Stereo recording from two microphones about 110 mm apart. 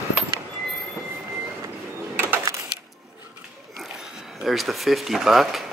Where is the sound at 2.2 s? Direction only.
20° right (ahead or behind).